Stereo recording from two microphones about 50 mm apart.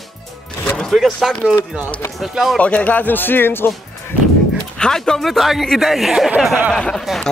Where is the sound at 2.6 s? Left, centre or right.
Left.